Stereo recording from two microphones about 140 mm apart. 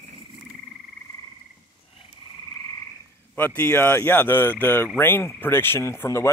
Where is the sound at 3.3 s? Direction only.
15° left (ahead or behind).